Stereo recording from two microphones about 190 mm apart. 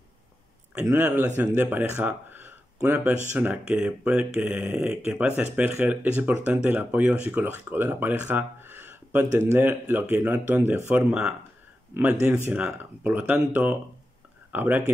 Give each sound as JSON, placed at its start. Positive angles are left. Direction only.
{"t": 0.8, "sound": "speech", "side_deg": -10}